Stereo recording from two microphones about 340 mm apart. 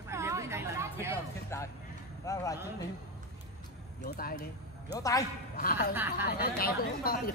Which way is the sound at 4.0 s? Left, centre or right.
Left.